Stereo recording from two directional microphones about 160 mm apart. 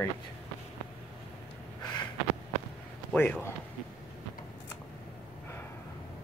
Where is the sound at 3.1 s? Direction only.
10° left (ahead or behind).